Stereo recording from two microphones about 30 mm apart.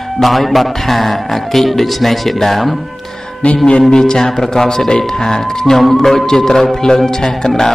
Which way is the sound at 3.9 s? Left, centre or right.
Left.